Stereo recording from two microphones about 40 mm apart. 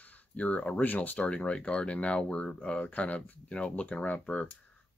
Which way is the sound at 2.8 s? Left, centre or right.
Left.